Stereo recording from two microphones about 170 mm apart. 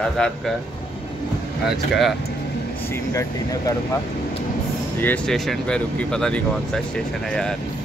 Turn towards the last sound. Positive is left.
turn(degrees=5)  # may be behind; listen again after turning